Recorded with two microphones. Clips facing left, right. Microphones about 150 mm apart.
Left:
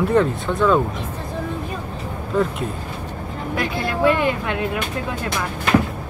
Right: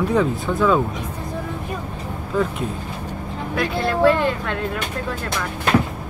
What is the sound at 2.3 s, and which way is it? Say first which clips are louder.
Speech: left 1 dB; centre (ahead or behind).